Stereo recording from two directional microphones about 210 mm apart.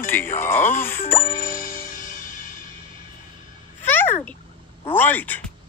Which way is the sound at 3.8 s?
10° left (ahead or behind).